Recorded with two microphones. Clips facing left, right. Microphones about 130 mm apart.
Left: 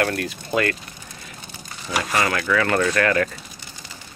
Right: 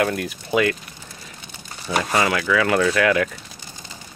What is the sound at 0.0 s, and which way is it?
Speech, 5° right (ahead or behind).